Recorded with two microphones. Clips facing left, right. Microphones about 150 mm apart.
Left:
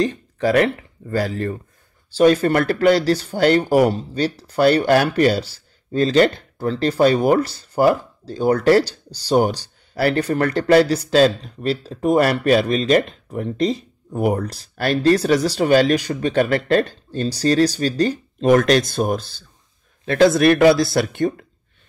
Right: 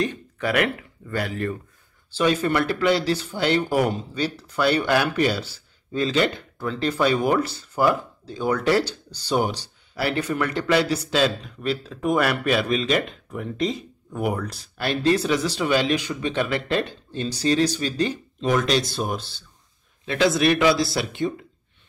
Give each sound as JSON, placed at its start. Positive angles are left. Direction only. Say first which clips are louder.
{"t": 0.0, "sound": "speech", "louder": "left 6 dB", "side_deg": 30}